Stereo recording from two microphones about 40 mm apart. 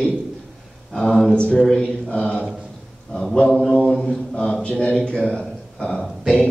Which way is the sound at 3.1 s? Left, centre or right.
Centre.